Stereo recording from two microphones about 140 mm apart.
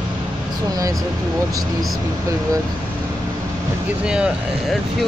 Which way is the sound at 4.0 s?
5° right (ahead or behind).